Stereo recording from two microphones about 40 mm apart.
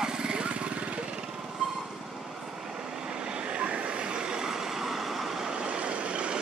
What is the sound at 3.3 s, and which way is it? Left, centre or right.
Vehicle, right.